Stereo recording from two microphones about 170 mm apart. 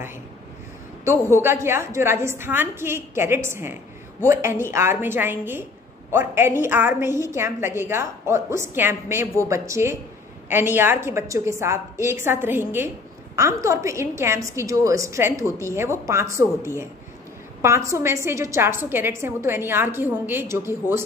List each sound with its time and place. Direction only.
1.4 s a woman's voice: 15° right (ahead or behind)